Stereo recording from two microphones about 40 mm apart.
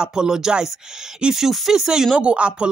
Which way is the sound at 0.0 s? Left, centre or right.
Centre.